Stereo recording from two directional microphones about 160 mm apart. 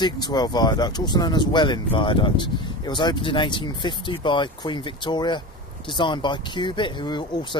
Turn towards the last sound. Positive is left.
turn(degrees=30)  # may be behind; listen again after turning